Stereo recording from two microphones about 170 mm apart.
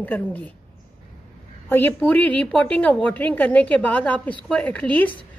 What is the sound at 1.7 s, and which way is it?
A woman's voice, 10° left (ahead or behind).